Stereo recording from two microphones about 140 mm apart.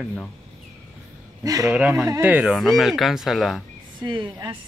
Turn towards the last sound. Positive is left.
turn(degrees=-30)  # may be behind; listen again after turning